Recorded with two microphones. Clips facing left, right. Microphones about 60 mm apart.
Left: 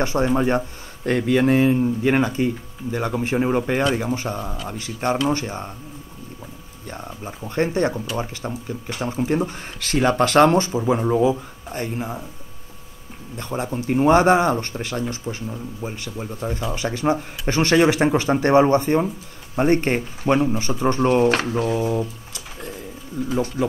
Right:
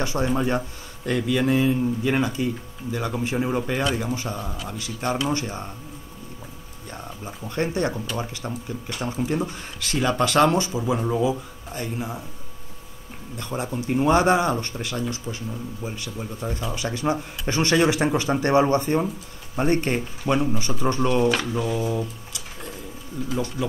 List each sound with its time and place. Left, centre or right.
0.0 s speech: left
7.2 s speech: left
13.4 s speech: left
21.3 s speech: left